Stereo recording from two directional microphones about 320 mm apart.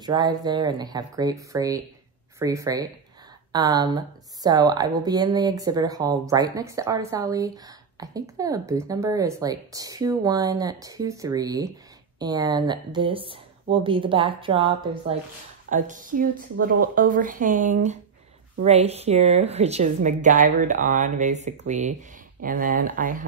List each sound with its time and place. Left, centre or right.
0.0 s a woman's voice: centre